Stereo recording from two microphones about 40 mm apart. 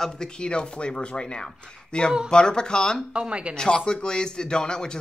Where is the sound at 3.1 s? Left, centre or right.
Right.